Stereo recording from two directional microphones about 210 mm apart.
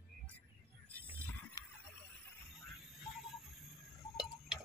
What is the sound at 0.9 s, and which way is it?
Music, 5° left (ahead or behind).